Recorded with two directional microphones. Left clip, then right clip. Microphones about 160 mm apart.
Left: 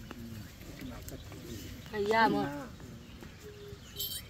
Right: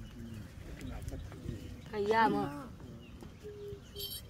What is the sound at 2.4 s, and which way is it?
Livestock, 45° left (ahead or behind).